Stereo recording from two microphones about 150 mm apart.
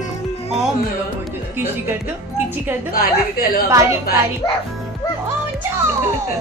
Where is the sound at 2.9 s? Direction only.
80° left.